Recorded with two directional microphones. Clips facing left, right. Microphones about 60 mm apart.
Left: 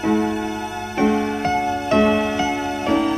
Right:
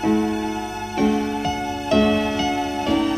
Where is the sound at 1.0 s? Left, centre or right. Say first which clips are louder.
Left 2 dB; left.